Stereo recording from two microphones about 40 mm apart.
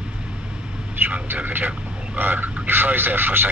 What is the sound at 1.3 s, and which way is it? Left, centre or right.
Vehicle, right.